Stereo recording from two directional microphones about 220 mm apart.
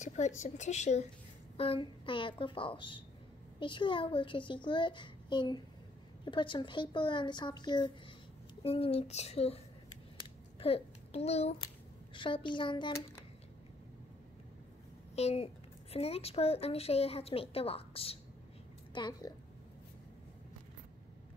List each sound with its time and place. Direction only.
0.0 s a sound: 30° left (ahead or behind)
0.4 s a woman's voice: 30° left (ahead or behind)
10.6 s a child's voice: 25° left (ahead or behind)
15.1 s a woman's voice: 30° left (ahead or behind)